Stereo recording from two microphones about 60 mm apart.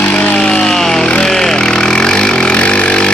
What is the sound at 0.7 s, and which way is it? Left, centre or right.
Chainsaw, centre.